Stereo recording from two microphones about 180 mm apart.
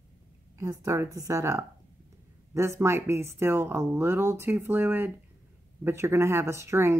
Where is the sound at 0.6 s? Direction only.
15° right (ahead or behind).